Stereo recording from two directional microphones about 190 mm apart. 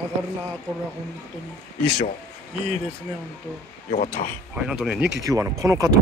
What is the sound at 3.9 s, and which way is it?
Speech, 40° left (ahead or behind).